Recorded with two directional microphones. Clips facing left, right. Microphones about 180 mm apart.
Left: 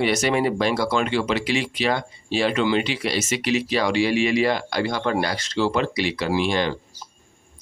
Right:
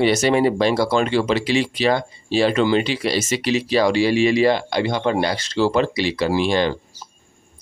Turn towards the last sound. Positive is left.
turn(degrees=-35)  # may be behind; listen again after turning